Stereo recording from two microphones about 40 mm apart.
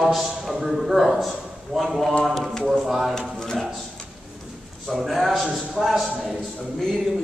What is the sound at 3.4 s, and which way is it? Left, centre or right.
Speech, centre.